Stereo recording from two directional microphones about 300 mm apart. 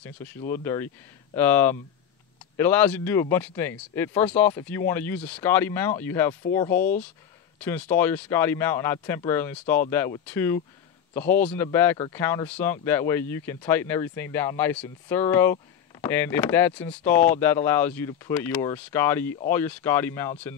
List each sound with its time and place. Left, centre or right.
0.0 s speech: centre